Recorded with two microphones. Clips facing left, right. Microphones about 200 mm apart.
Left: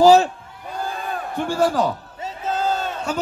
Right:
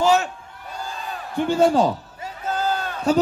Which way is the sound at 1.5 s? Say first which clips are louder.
Right 3 dB; 25° right (ahead or behind).